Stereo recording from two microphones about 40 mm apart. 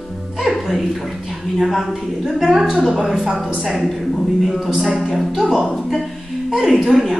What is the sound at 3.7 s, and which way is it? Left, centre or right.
A woman's voice, centre.